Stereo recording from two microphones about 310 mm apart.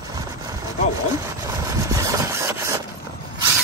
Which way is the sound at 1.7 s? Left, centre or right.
Centre.